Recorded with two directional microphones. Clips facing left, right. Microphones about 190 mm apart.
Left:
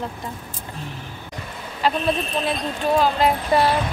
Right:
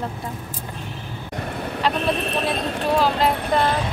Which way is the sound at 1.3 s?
60° right (ahead or behind).